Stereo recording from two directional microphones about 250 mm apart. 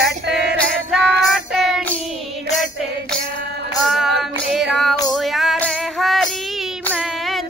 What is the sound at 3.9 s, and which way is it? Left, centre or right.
Singing, centre.